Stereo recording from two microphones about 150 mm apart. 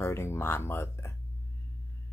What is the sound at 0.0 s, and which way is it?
Speech, 15° left (ahead or behind).